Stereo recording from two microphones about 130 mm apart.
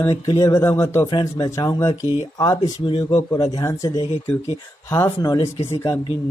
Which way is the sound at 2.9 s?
45° left (ahead or behind).